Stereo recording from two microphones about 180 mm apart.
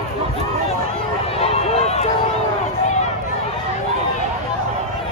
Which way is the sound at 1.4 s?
35° left (ahead or behind).